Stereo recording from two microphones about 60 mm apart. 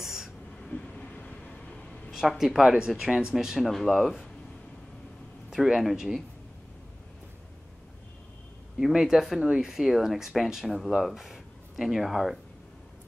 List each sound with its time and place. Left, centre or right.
0.0 s a sound: centre
0.7 s vehicle: left
2.1 s speech: centre
5.5 s speech: centre
8.7 s speech: centre